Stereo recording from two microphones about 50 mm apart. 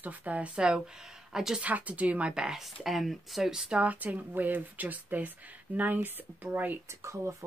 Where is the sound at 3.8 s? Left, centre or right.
Right.